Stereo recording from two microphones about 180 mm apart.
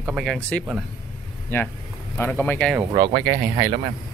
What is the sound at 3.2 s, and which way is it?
Speech, 20° right (ahead or behind).